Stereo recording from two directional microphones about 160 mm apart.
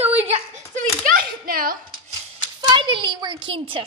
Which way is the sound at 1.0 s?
65° right (ahead or behind).